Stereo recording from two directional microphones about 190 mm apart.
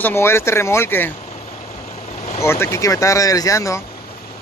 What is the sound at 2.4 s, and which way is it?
Speech, 15° left (ahead or behind).